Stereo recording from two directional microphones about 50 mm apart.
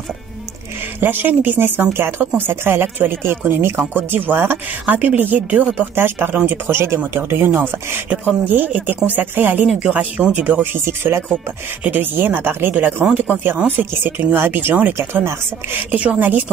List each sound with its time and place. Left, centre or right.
1.0 s speech: right
5.9 s speech: right
6.3 s speech: right
6.7 s speech: right
7.2 s speech: right
8.1 s speech: right
9.7 s speech: right
10.9 s speech: right
11.8 s speech: right
16.2 s speech: right